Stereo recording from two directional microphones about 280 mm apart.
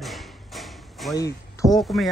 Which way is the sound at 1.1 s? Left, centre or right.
Centre.